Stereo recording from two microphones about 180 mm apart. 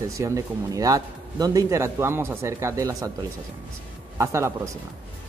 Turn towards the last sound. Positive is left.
turn(degrees=-15)  # may be behind; listen again after turning